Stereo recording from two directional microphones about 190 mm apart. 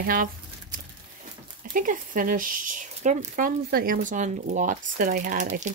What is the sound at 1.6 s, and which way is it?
Speech, 45° right (ahead or behind).